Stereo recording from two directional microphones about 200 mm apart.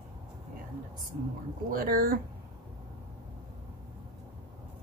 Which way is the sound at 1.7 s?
45° right (ahead or behind).